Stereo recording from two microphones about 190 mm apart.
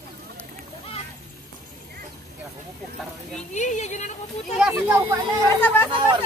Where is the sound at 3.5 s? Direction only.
40° left (ahead or behind).